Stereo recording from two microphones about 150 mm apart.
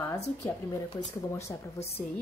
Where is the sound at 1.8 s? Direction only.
45° left (ahead or behind).